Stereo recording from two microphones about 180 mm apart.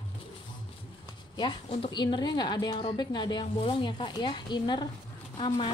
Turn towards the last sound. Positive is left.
turn(degrees=30)  # may be behind; listen again after turning